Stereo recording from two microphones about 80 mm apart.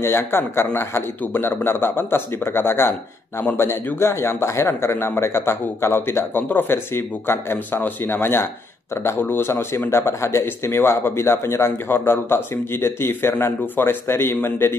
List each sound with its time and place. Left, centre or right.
0.0 s a man's voice: left